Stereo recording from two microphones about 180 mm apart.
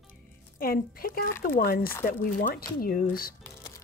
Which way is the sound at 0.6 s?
55° left (ahead or behind).